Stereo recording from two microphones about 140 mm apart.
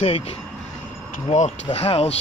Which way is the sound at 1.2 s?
50° left (ahead or behind).